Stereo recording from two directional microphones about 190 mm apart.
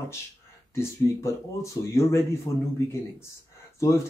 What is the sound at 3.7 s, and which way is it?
Speech, 15° left (ahead or behind).